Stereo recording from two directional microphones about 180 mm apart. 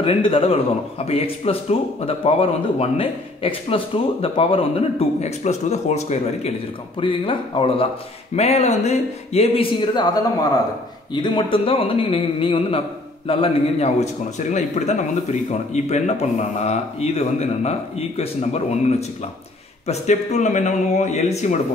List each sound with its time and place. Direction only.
0.0 s speech: 30° left (ahead or behind)
11.2 s speech: 30° left (ahead or behind)